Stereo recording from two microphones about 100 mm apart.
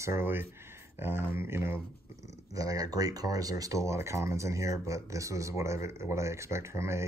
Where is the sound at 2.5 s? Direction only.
35° right (ahead or behind).